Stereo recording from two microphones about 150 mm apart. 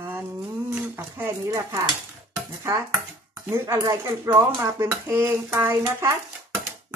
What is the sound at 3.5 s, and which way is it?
Speech, 20° right (ahead or behind).